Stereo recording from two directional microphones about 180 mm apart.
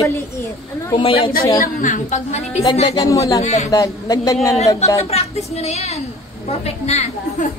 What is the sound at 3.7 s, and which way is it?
Speech, 20° left (ahead or behind).